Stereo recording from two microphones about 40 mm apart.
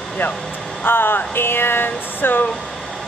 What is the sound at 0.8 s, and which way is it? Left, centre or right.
Speech, left.